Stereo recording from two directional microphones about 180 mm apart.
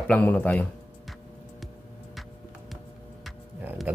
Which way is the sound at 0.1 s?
10° left (ahead or behind).